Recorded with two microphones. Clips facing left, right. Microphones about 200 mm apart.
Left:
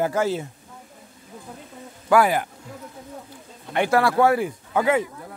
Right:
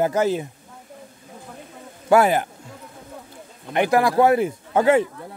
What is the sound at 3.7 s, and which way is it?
Speech, 15° right (ahead or behind).